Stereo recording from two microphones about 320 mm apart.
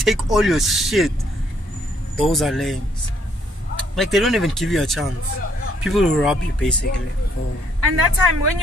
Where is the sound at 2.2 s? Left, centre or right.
Centre.